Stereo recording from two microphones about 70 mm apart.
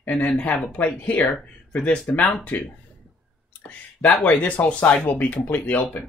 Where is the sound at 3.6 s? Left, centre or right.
Left.